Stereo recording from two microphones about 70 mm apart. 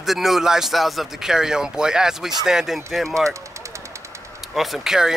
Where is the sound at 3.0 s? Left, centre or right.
Right.